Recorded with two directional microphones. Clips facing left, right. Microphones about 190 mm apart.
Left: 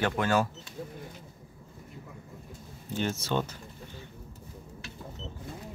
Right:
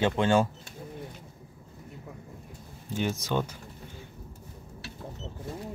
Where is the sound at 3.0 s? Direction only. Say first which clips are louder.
Right 1 dB; 10° right (ahead or behind).